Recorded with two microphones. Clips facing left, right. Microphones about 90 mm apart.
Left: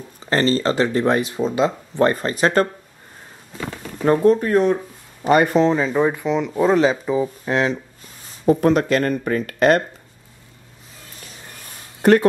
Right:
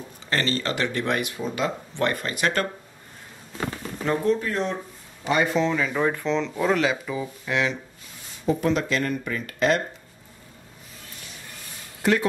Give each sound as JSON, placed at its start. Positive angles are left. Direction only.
{"t": 0.3, "sound": "speech", "side_deg": 35}
{"t": 4.0, "sound": "speech", "side_deg": 45}
{"t": 5.9, "sound": "speech", "side_deg": 15}
{"t": 6.5, "sound": "speech", "side_deg": 30}
{"t": 8.3, "sound": "speech", "side_deg": 50}
{"t": 12.0, "sound": "speech", "side_deg": 50}